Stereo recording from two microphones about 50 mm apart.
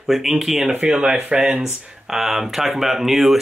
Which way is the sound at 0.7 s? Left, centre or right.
Right.